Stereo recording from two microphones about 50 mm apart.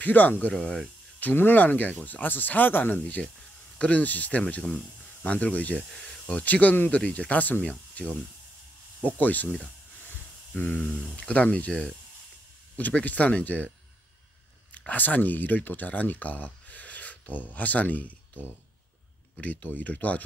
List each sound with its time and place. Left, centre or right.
0.0 s speech: left
4.5 s speech: left
5.9 s speech: centre
6.2 s speech: left
10.5 s speech: left
12.7 s speech: left
14.9 s speech: left
19.4 s speech: left